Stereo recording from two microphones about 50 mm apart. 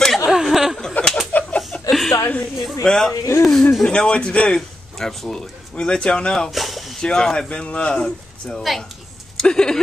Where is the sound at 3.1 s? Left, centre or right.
Left.